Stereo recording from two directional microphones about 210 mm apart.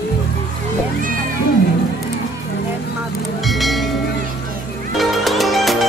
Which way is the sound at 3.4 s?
Centre (ahead or behind).